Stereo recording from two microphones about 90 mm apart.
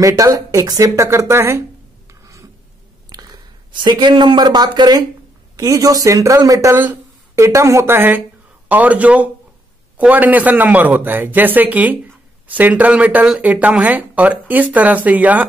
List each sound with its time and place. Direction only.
0.0 s speech: 40° right (ahead or behind)
3.1 s a sound: 45° right (ahead or behind)
3.7 s a man's voice: 55° right (ahead or behind); by 15.4 s 15° right (ahead or behind)